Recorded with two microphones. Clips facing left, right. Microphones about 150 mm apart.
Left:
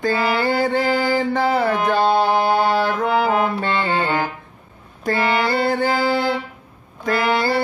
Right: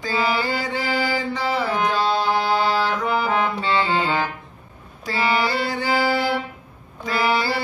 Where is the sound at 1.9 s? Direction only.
55° left (ahead or behind).